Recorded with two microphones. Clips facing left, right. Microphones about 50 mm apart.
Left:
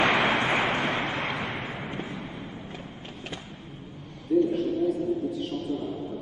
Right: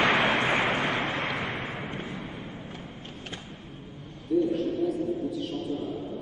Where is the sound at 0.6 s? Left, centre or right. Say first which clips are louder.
Even; left.